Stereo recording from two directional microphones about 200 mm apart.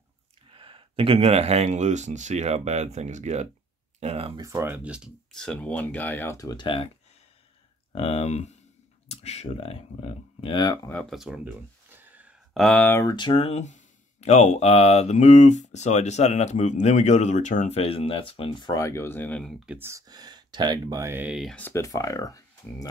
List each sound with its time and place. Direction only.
0.5 s speech: 25° right (ahead or behind)
4.4 s speech: 15° right (ahead or behind); by 6.9 s 25° left (ahead or behind)
7.9 s speech: 30° left (ahead or behind)